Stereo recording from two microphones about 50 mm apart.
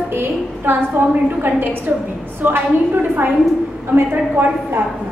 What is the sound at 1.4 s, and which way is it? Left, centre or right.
A woman's voice, right.